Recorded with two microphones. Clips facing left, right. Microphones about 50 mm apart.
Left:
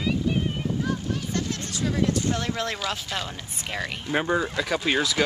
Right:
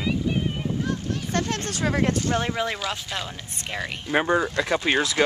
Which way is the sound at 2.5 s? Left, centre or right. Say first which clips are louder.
Right 2 dB; centre.